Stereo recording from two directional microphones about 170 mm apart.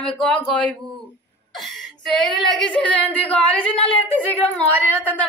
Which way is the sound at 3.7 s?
35° left (ahead or behind).